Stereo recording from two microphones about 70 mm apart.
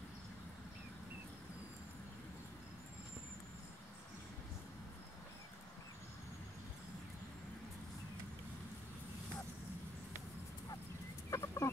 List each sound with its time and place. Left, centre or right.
11.2 s chicken: left